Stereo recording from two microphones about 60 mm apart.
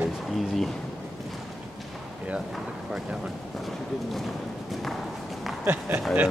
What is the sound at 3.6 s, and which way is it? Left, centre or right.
Speech, centre.